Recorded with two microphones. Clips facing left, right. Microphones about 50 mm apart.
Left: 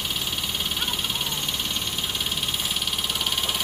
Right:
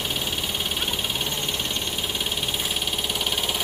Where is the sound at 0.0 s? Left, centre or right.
Centre.